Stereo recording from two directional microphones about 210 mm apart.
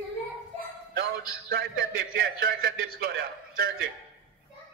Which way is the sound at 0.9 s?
45° right (ahead or behind).